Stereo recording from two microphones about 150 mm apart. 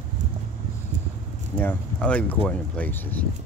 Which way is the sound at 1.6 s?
10° left (ahead or behind).